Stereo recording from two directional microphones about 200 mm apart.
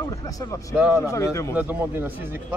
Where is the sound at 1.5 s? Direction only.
10° right (ahead or behind).